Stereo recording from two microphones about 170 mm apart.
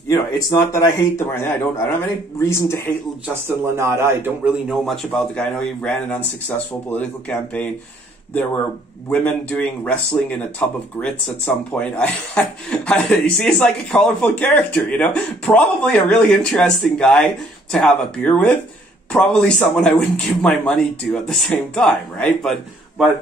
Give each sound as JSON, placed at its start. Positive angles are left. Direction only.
{"t": 0.1, "sound": "speech", "side_deg": 20}
{"t": 3.4, "sound": "speech", "side_deg": -15}
{"t": 4.6, "sound": "speech", "side_deg": 0}
{"t": 9.1, "sound": "a man's voice", "side_deg": 5}